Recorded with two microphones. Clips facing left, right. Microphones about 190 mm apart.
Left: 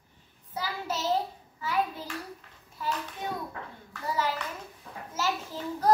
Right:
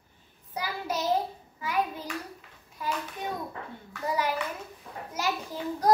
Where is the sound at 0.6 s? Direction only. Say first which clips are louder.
Right 1 dB; 15° right (ahead or behind).